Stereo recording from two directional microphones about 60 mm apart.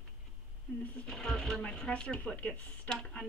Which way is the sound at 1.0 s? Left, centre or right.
Centre.